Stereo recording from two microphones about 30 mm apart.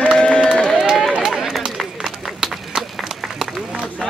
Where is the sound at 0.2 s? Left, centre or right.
Left.